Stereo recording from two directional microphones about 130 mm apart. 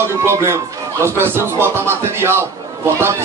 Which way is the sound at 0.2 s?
20° right (ahead or behind).